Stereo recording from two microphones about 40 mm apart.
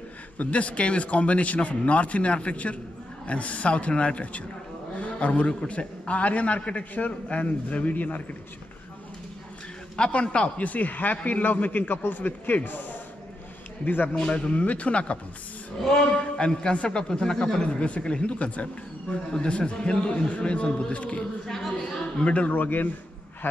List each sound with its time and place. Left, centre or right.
0.4 s a man's voice: left
9.9 s a man's voice: left
14.1 s a man's voice: left
16.9 s a man's voice: centre
21.5 s a woman's voice: centre
22.2 s a man's voice: left
23.4 s a man's voice: left